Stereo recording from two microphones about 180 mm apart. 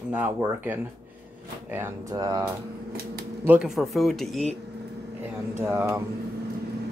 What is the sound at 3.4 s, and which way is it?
Speech, 5° right (ahead or behind).